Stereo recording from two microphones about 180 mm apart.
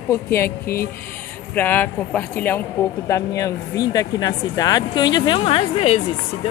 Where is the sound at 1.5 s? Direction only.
10° left (ahead or behind); by 5.9 s 30° left (ahead or behind).